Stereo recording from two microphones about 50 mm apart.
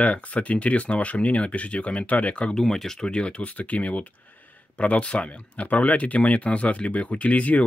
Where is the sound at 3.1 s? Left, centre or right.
Left.